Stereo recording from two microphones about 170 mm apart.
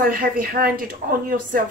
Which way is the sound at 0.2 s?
60° right (ahead or behind).